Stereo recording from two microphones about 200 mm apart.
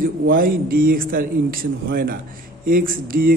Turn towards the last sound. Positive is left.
turn(degrees=-45)  # may be behind; listen again after turning